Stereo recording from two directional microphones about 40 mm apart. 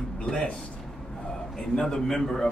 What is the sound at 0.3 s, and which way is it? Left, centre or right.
Speech, left.